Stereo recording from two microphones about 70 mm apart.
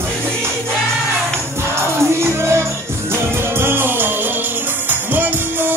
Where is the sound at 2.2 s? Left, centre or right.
Right.